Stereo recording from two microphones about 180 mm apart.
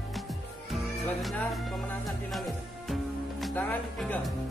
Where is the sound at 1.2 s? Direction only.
Centre (ahead or behind).